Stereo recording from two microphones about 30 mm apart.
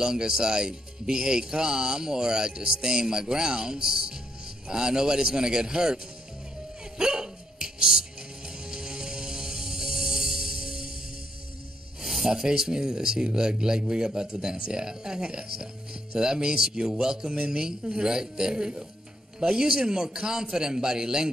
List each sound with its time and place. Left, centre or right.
0.0 s speech: right
7.0 s dog: right
8.5 s music: right
12.3 s speech: centre